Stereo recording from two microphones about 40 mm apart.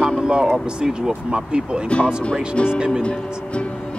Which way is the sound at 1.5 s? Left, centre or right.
Right.